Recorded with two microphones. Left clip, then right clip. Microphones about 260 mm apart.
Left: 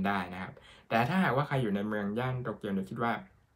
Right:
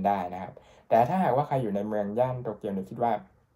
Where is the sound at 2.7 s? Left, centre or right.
Left.